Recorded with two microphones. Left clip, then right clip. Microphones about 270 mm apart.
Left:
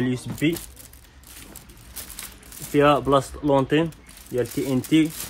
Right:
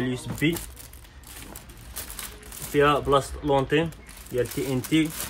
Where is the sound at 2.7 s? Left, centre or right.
Centre.